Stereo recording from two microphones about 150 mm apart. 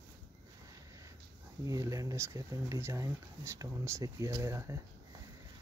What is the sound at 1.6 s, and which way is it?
Speech, 20° right (ahead or behind).